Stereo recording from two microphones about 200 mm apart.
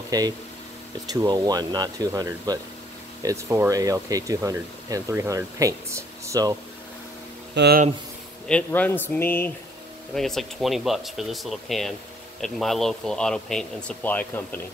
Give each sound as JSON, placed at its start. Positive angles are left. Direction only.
{"t": 0.1, "sound": "speech", "side_deg": -20}
{"t": 7.5, "sound": "speech", "side_deg": -55}
{"t": 8.5, "sound": "speech", "side_deg": 5}